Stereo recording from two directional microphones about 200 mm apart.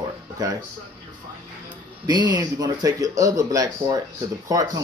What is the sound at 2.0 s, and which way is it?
Speech, 20° right (ahead or behind).